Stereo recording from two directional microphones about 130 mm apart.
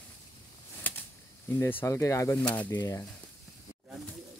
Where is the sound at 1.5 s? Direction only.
15° left (ahead or behind).